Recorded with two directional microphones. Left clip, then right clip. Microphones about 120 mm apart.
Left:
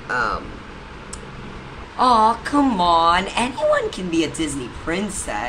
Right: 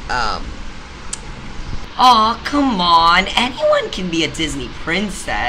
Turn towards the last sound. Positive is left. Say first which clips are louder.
# right 5 dB
turn(degrees=-10)  # may be behind; listen again after turning